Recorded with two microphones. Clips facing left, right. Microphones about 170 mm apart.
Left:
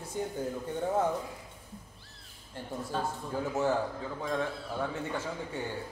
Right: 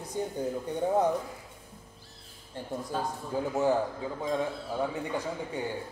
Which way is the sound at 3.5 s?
15° right (ahead or behind).